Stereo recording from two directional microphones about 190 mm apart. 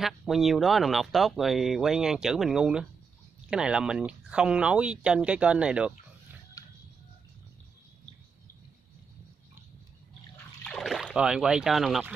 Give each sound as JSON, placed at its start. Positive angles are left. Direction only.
{"t": 0.0, "sound": "speech", "side_deg": 0}
{"t": 6.6, "sound": "music", "side_deg": 20}
{"t": 10.6, "sound": "speech", "side_deg": 0}